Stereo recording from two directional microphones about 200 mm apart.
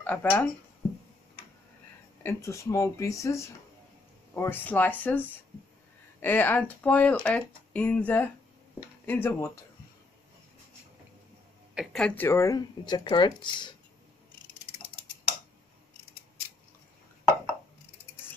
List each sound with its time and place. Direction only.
0.0 s speech: 10° left (ahead or behind)
2.2 s speech: 15° left (ahead or behind)
6.2 s speech: 10° left (ahead or behind)
11.7 s speech: centre (ahead or behind); by 13.7 s 25° left (ahead or behind)